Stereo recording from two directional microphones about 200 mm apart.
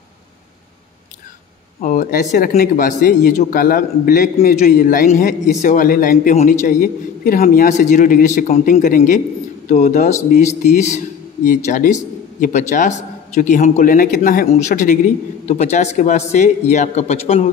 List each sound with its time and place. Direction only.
1.8 s a man's voice: 45° left (ahead or behind)